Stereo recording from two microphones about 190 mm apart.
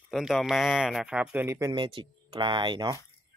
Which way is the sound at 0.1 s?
Centre (ahead or behind).